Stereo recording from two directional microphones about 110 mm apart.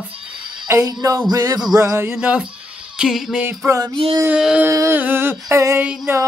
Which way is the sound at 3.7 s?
30° right (ahead or behind).